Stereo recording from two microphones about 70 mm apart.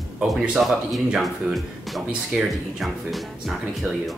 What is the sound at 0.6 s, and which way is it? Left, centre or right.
Speech, centre.